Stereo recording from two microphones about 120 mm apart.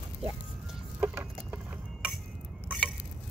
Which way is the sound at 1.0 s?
20° right (ahead or behind).